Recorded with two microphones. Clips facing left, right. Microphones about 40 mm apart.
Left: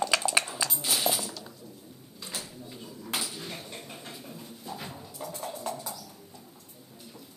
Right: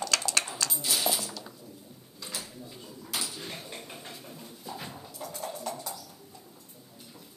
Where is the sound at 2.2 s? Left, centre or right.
Centre.